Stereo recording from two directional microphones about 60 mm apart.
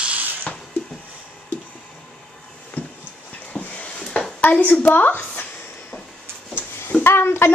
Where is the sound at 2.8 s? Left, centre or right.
Left.